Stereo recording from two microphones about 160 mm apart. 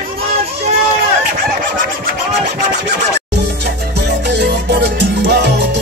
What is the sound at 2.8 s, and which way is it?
Music, 90° right.